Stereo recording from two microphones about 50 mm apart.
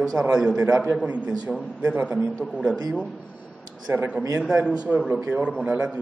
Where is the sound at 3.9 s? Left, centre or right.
Right.